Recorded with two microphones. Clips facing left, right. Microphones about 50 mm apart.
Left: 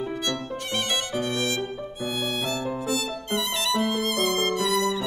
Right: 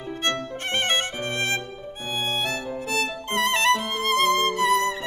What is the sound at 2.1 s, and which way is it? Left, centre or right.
Music, right.